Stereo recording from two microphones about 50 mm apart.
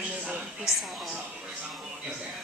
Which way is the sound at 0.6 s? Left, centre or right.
Centre.